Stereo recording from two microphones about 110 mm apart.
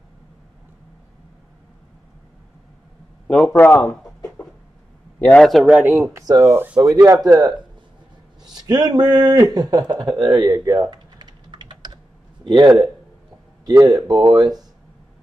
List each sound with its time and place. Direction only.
3.3 s a man's voice: 5° left (ahead or behind)
5.4 s speech: centre (ahead or behind)
5.7 s speech: 10° right (ahead or behind)
6.1 s speech: 30° right (ahead or behind)
6.5 s speech: 20° right (ahead or behind)
6.8 s speech: 30° right (ahead or behind)
10.5 s speech: 25° right (ahead or behind)
11.1 s typing: 40° right (ahead or behind)
12.4 s a man's voice: 45° right (ahead or behind)